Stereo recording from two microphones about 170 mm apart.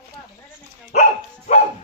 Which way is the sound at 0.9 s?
45° left (ahead or behind).